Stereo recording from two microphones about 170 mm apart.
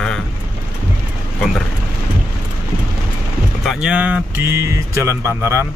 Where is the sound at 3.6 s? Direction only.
5° right (ahead or behind).